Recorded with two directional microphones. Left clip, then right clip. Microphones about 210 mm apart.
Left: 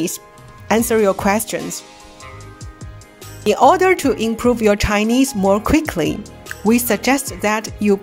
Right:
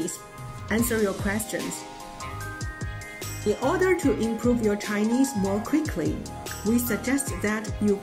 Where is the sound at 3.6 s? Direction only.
50° left (ahead or behind).